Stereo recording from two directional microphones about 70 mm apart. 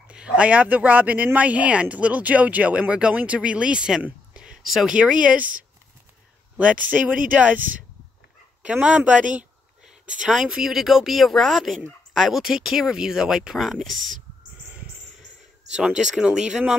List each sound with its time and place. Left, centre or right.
0.1 s speech: centre
4.3 s a sound: centre
4.9 s speech: centre
6.5 s speech: centre
8.8 s speech: centre
10.2 s speech: centre
15.7 s speech: centre